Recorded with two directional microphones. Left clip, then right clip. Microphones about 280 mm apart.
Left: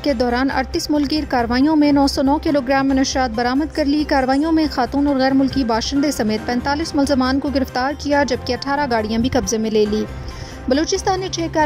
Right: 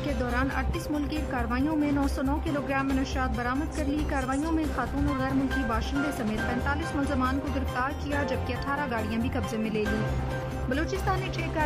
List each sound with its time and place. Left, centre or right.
0.0 s a woman's voice: left
10.7 s a woman's voice: left